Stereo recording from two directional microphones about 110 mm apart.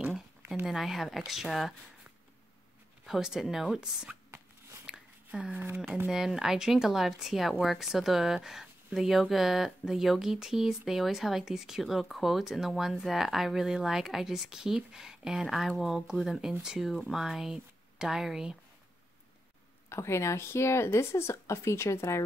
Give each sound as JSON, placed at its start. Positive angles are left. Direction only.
{"t": 0.7, "sound": "speech", "side_deg": 0}
{"t": 3.1, "sound": "speech", "side_deg": -5}
{"t": 4.8, "sound": "a sound", "side_deg": -10}
{"t": 6.0, "sound": "speech", "side_deg": -5}
{"t": 19.9, "sound": "speech", "side_deg": 25}